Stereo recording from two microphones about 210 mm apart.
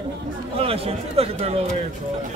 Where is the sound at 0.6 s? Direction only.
30° right (ahead or behind).